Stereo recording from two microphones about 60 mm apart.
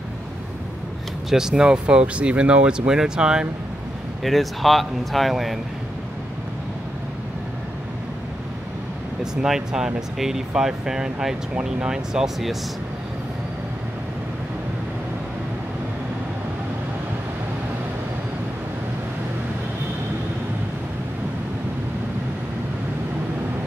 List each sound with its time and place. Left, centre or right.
1.3 s speech: centre
4.2 s speech: centre
9.2 s speech: centre